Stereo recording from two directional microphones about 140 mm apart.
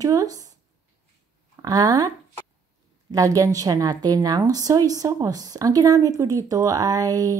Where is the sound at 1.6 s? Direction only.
25° right (ahead or behind).